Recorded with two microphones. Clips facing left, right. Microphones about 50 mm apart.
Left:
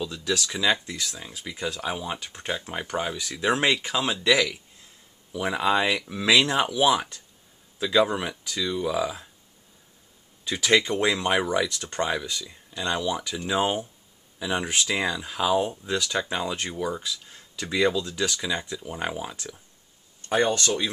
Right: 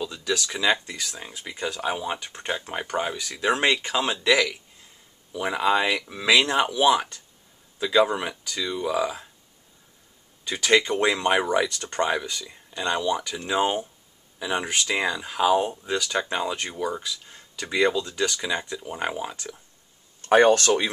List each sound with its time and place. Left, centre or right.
0.2 s speech: centre
10.4 s speech: centre
20.2 s speech: right